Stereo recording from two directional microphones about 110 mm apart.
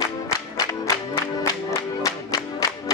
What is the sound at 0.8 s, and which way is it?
Music, 20° left (ahead or behind).